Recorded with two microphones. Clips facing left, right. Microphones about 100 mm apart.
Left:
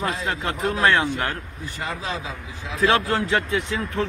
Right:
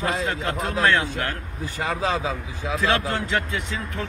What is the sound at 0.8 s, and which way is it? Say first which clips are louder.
Speech: left 1 dB; 15° left (ahead or behind).